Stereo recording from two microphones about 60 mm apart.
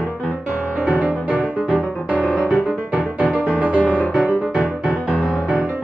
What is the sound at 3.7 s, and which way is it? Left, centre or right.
Music, left.